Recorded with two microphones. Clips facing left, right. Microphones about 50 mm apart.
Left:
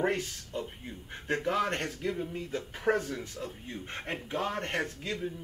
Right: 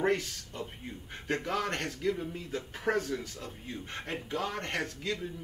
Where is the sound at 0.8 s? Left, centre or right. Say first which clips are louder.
Even; centre.